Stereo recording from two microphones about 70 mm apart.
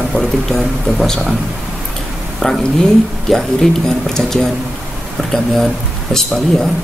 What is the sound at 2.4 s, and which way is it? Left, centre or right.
Speech, centre.